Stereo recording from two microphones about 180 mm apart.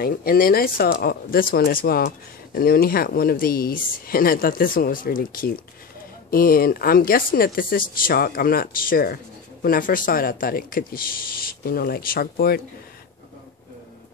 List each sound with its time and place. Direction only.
0.0 s speech: 55° left (ahead or behind)